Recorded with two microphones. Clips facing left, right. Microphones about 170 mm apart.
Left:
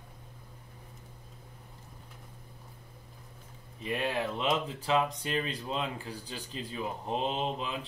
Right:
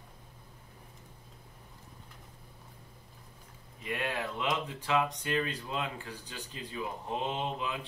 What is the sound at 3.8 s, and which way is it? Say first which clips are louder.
Speech: left 3 dB; 30° left (ahead or behind).